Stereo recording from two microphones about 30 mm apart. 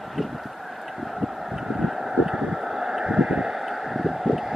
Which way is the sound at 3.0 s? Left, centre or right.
Right.